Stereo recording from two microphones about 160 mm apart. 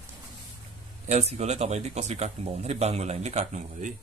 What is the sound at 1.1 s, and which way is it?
Speech, 40° right (ahead or behind).